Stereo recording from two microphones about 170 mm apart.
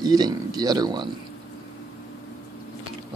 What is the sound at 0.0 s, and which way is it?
Speech, 25° right (ahead or behind).